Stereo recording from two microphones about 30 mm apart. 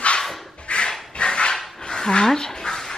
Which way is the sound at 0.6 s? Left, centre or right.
Left.